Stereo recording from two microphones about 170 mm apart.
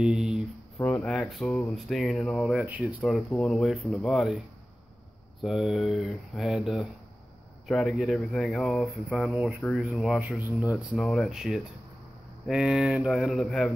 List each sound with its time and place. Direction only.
0.0 s speech: 5° right (ahead or behind)
5.4 s speech: centre (ahead or behind)
11.0 s speech: centre (ahead or behind)